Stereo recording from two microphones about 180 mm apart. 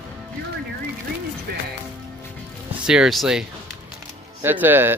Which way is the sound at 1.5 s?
60° right (ahead or behind).